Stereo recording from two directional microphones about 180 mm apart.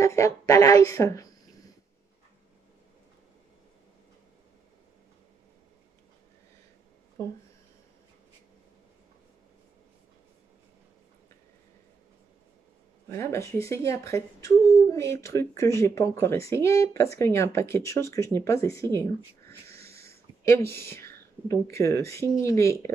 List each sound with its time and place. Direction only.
0.0 s speech: 15° left (ahead or behind)
13.1 s speech: 15° left (ahead or behind)
20.1 s a sound: 15° left (ahead or behind)
20.9 s speech: 15° left (ahead or behind)